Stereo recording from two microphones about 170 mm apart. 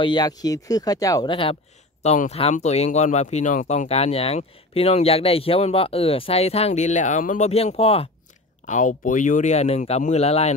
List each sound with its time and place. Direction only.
0.0 s speech: 25° left (ahead or behind)
2.0 s speech: 40° left (ahead or behind)
8.6 s speech: 50° left (ahead or behind)